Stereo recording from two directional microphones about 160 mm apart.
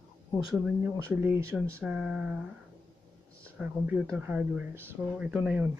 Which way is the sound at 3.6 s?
10° right (ahead or behind).